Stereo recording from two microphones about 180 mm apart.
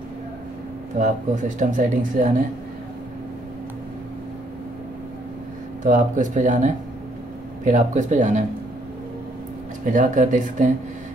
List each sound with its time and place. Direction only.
0.9 s speech: 45° right (ahead or behind)
5.9 s speech: 45° right (ahead or behind)
9.8 s speech: 45° right (ahead or behind)